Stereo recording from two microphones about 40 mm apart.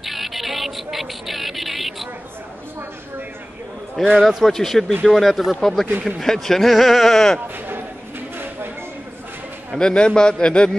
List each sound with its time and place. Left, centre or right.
0.0 s a sound: centre
4.0 s speech: centre
5.6 s speech: centre
9.8 s a man's voice: left